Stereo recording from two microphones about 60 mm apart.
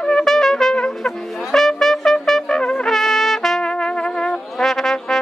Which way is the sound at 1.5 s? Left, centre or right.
Centre.